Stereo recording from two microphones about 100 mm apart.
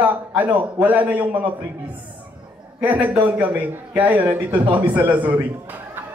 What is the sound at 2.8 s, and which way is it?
A man's voice, 15° right (ahead or behind).